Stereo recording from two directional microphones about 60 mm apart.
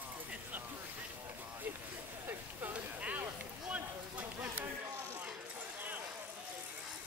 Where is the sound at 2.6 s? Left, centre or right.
Right.